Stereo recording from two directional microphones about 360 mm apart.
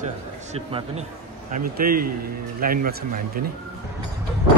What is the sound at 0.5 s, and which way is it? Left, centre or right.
Speech, centre.